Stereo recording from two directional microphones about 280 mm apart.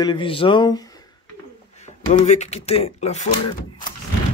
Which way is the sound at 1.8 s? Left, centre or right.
Left.